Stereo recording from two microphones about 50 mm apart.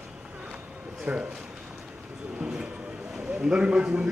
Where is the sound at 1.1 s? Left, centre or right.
Right.